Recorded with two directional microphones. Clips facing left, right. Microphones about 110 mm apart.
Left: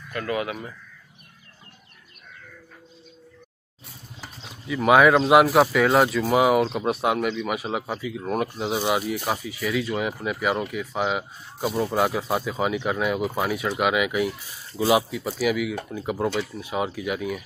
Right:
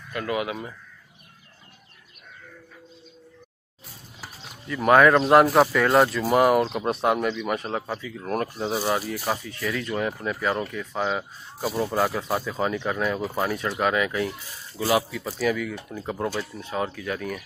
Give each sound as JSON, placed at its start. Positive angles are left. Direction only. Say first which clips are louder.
{"t": 0.1, "sound": "speech", "louder": "even", "side_deg": -20}
{"t": 4.6, "sound": "speech", "louder": "even", "side_deg": 5}